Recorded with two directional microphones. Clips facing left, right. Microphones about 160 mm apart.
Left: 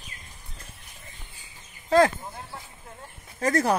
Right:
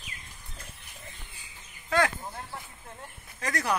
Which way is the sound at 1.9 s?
30° left (ahead or behind).